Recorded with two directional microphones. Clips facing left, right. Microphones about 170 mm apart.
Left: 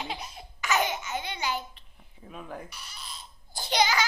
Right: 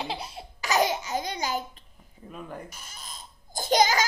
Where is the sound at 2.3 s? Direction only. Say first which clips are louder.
Right 1 dB; centre (ahead or behind).